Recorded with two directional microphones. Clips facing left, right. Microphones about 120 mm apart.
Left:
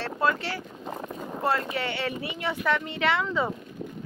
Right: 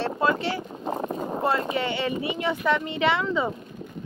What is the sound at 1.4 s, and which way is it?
Speech, 20° right (ahead or behind).